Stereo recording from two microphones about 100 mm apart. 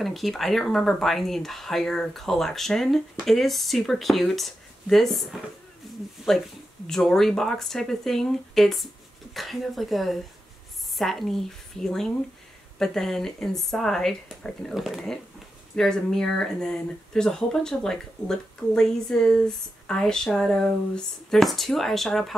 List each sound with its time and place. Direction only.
0.0 s speech: centre (ahead or behind)